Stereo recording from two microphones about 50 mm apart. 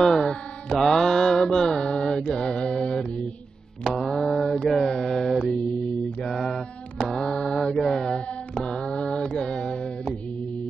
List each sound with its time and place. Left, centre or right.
0.0 s mantra: centre
7.0 s mantra: centre
7.6 s mantra: centre